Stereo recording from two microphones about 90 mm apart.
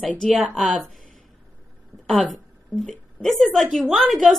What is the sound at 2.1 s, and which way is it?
A woman's voice, centre (ahead or behind).